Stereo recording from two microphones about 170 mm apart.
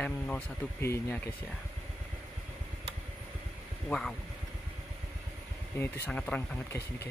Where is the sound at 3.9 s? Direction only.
Centre (ahead or behind).